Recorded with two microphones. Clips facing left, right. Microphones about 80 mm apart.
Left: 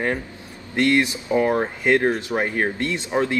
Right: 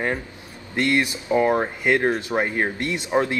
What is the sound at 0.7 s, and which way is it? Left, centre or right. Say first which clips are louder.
Speech: left 2 dB; right.